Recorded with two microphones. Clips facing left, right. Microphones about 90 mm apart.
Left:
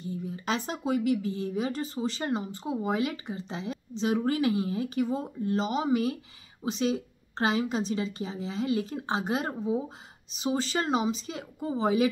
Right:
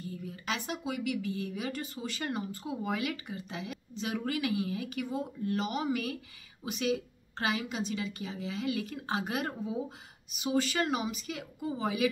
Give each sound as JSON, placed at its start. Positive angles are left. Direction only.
{"t": 0.0, "sound": "speech", "side_deg": 25}